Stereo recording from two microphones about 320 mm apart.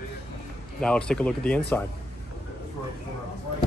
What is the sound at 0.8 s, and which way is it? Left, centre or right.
Speech, centre.